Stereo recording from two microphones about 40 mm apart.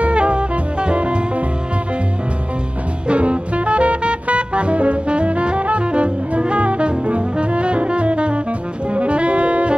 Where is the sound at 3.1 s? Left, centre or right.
Right.